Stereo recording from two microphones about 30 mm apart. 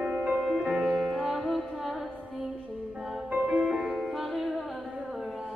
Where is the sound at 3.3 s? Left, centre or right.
Right.